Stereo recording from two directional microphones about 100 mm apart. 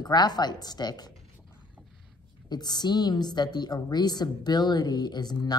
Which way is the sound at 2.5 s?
45° left (ahead or behind).